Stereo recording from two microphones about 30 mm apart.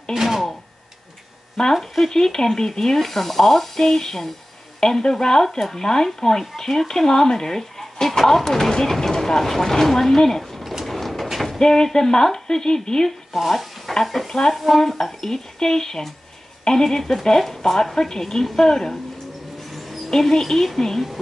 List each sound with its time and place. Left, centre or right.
0.1 s a sound: centre
1.6 s speech: centre
2.0 s a woman's voice: centre
6.9 s speech: left
10.6 s a sound: centre
10.9 s a sound: centre
11.6 s speech: left
13.5 s stir: centre
14.0 s speech: centre
14.8 s speech: centre
15.1 s speech: centre
19.7 s a sound: centre
20.1 s speech: centre